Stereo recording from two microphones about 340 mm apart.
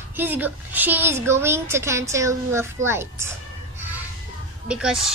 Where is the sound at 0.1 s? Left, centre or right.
Centre.